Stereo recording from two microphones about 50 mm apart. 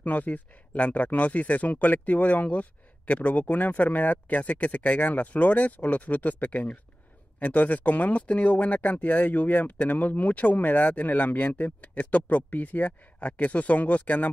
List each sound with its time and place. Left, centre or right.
0.0 s speech: left